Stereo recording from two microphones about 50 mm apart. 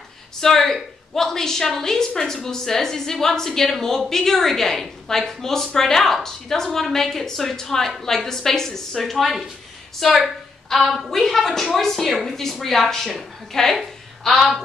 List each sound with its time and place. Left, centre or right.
0.4 s a woman's voice: centre